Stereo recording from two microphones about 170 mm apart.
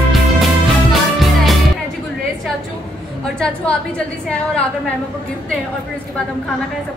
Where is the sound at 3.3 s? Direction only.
5° left (ahead or behind).